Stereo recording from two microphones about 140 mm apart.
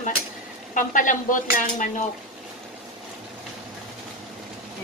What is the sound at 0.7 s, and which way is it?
Speech, 70° left (ahead or behind).